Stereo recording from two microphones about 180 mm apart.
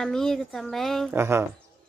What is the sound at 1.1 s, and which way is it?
Speech, 15° right (ahead or behind).